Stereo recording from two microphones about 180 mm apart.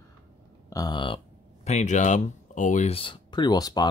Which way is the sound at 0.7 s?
20° left (ahead or behind).